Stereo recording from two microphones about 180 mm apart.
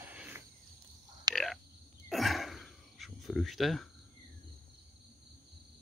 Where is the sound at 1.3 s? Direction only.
20° right (ahead or behind).